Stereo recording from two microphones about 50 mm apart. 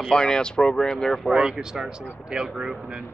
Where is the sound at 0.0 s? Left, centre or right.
Centre.